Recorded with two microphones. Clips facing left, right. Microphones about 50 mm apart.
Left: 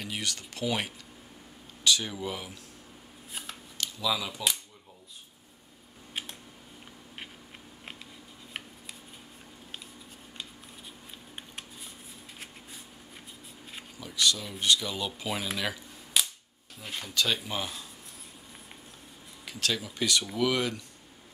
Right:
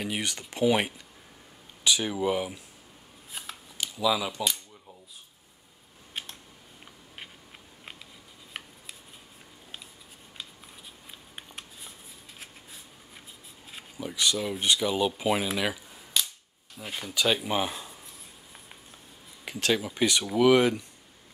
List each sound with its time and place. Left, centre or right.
0.0 s speech: right
3.3 s shuffling cards: centre
3.7 s a sound: centre
6.2 s typing: centre
11.3 s a sound: centre
13.9 s a sound: right
14.6 s speech: right
15.2 s speech: centre
16.1 s cap gun: centre
16.7 s speech: centre; by 17.8 s right
19.4 s speech: right